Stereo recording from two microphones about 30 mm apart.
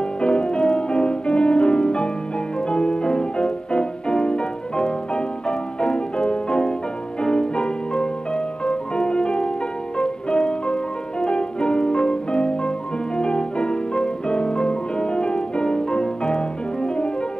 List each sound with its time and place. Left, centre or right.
0.2 s music: left